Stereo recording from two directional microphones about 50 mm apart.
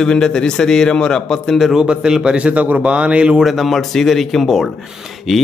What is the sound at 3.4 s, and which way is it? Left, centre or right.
Speech, centre.